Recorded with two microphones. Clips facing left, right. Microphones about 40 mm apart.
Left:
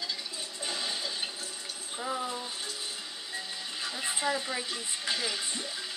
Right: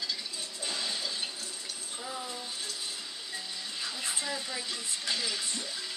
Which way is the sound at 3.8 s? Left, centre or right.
Centre.